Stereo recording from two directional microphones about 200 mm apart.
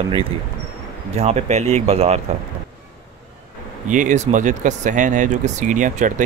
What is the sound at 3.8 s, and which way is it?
Speech, 40° right (ahead or behind).